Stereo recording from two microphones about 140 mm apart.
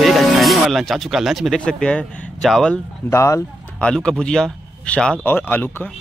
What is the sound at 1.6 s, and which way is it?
Speech, 5° left (ahead or behind).